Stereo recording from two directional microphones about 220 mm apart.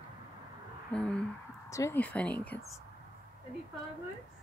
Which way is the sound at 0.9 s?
5° left (ahead or behind).